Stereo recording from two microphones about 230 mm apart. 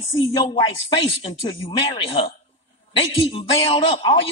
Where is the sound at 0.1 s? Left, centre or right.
Centre.